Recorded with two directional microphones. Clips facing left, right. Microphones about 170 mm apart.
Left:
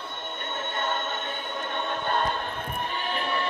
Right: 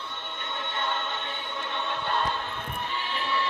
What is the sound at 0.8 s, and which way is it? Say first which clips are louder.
Choir: left 1 dB; 45° left (ahead or behind).